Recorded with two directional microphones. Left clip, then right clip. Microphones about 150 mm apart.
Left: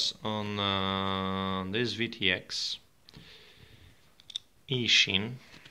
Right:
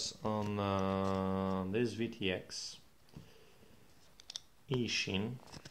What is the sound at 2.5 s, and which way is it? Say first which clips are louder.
Speech: left 12 dB; 90° left.